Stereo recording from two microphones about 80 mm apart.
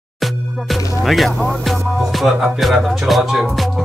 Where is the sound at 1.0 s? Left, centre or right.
Centre.